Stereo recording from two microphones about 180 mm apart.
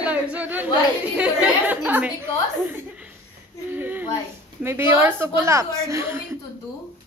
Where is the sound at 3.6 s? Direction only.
10° right (ahead or behind).